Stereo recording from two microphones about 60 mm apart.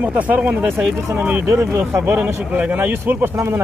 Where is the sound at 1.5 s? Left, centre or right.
Right.